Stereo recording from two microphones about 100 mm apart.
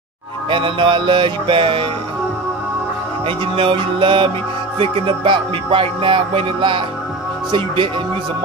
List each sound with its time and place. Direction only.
0.5 s music: 60° right (ahead or behind)
3.3 s music: 60° right (ahead or behind)